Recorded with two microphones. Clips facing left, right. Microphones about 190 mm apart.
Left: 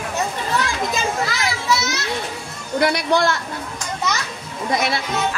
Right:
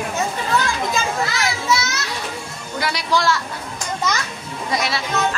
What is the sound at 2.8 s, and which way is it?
Speech, 55° left (ahead or behind).